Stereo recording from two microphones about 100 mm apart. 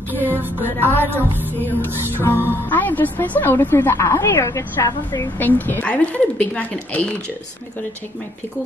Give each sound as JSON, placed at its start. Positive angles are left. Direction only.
{"t": 0.2, "sound": "music", "side_deg": -20}
{"t": 0.6, "sound": "a woman's voice", "side_deg": 20}
{"t": 1.9, "sound": "music", "side_deg": -20}
{"t": 2.4, "sound": "a woman's voice", "side_deg": 20}
{"t": 5.4, "sound": "a woman's voice", "side_deg": 20}